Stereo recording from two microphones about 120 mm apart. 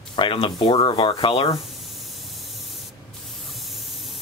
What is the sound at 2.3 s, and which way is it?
Spray, centre (ahead or behind).